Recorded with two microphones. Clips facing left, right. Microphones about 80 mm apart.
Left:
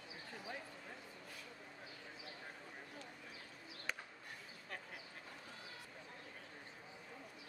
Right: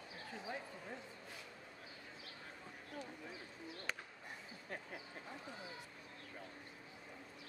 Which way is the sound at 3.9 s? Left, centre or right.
Centre.